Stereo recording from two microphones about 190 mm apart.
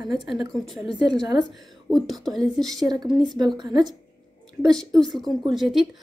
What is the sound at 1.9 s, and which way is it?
Speech, centre (ahead or behind).